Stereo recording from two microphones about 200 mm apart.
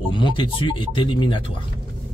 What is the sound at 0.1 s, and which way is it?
Speech, 25° left (ahead or behind).